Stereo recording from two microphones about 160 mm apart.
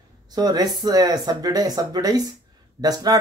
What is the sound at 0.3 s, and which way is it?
Speech, 25° right (ahead or behind).